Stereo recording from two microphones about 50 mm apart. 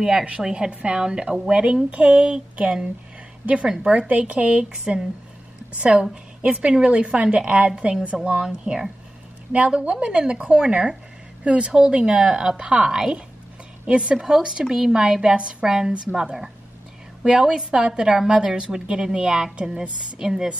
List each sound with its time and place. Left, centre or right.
0.0 s a woman's voice: centre